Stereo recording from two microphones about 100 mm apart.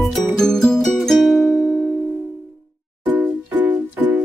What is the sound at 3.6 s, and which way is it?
Music, 10° right (ahead or behind).